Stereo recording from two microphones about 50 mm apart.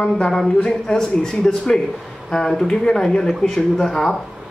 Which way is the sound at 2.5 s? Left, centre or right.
Centre.